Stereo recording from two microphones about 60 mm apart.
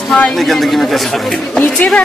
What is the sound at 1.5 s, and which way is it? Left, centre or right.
Speech, left.